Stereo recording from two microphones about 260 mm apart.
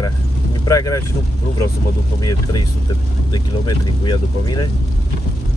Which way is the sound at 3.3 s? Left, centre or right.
Centre.